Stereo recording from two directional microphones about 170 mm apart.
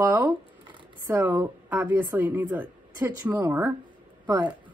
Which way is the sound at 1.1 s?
10° right (ahead or behind).